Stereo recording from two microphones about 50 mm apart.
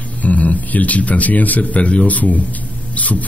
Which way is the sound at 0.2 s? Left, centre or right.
Left.